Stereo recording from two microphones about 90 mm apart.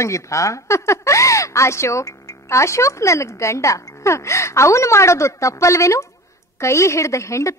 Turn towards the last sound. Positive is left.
turn(degrees=35)  # may be behind; listen again after turning